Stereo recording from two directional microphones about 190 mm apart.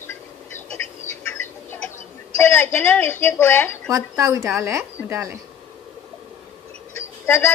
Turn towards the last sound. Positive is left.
turn(degrees=10)  # may be behind; listen again after turning